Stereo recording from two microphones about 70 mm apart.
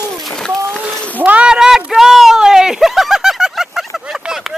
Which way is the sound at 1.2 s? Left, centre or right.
Right.